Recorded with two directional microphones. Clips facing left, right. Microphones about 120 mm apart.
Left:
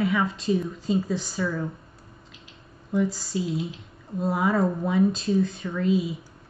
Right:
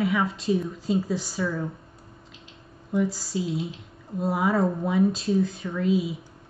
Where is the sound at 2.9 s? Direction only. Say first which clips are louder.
Even; centre (ahead or behind).